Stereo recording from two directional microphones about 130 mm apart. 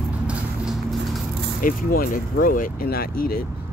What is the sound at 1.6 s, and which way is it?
Speech, 90° left.